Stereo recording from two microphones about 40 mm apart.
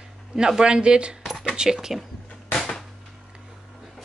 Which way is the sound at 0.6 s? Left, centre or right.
Right.